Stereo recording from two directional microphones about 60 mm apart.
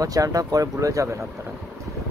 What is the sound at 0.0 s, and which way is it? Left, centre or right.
Speech, right.